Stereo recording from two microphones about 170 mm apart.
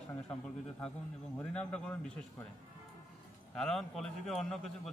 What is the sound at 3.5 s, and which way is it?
A man's voice, 5° left (ahead or behind).